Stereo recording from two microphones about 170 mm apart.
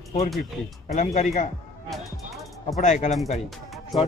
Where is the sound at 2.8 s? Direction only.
45° left (ahead or behind).